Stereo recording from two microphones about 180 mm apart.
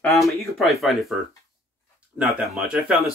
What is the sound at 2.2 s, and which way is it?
Speech, 5° right (ahead or behind).